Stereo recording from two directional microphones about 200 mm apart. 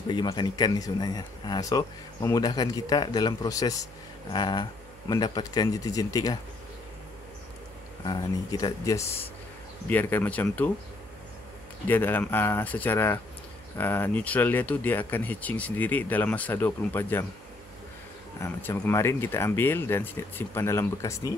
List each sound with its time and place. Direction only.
0.1 s speech: 25° left (ahead or behind)
8.0 s speech: 20° left (ahead or behind)
11.9 s speech: 10° left (ahead or behind)
18.4 s speech: 10° left (ahead or behind)